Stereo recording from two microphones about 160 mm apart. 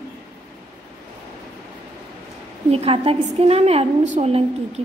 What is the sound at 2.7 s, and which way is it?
A woman's voice, 40° right (ahead or behind).